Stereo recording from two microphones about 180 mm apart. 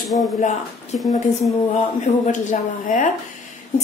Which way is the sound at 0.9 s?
40° left (ahead or behind).